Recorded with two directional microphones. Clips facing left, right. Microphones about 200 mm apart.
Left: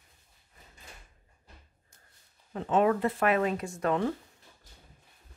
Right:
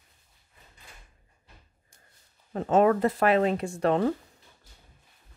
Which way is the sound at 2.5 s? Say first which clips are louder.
Right 4 dB; 45° right (ahead or behind).